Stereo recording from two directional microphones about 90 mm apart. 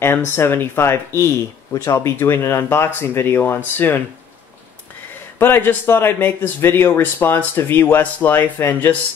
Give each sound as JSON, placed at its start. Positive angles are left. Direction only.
{"t": 0.0, "sound": "speech", "side_deg": 25}
{"t": 5.4, "sound": "speech", "side_deg": 20}